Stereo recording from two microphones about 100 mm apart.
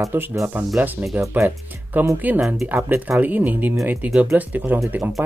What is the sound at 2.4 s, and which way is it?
Speech, 5° right (ahead or behind).